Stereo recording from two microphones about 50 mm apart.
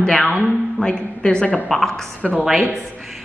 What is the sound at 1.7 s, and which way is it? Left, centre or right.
Speech, centre.